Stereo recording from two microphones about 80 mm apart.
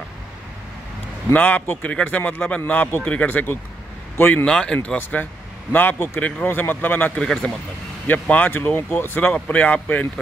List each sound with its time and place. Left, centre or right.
1.3 s speech: left
4.5 s speech: centre
4.8 s speech: left
7.2 s speech: centre
8.1 s speech: left